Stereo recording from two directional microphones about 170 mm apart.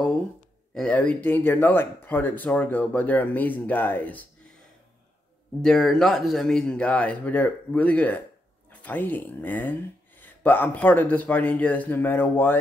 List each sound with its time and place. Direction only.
0.7 s speech: 10° left (ahead or behind)
5.6 s speech: 5° left (ahead or behind)